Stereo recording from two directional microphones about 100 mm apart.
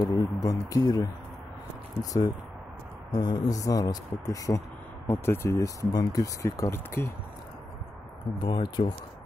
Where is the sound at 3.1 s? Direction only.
45° left (ahead or behind).